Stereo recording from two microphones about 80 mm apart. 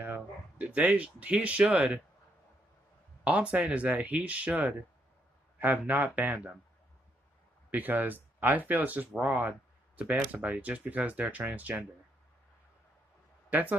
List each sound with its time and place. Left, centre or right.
0.0 s speech: right
3.3 s speech: centre
7.7 s speech: right
13.5 s speech: right